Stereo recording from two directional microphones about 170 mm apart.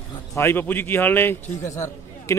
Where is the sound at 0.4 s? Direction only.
10° left (ahead or behind).